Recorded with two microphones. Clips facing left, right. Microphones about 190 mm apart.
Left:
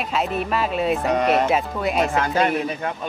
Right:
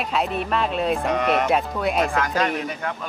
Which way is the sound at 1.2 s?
35° left (ahead or behind).